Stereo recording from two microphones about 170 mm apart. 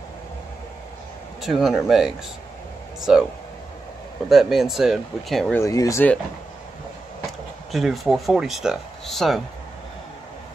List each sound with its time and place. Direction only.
1.4 s speech: centre (ahead or behind)
4.3 s speech: centre (ahead or behind)
5.6 s speech: 20° left (ahead or behind)
7.7 s speech: centre (ahead or behind)